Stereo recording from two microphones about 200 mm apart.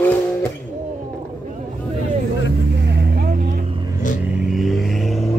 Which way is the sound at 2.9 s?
55° right (ahead or behind).